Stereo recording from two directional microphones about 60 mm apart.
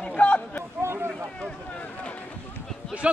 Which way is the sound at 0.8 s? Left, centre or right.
Right.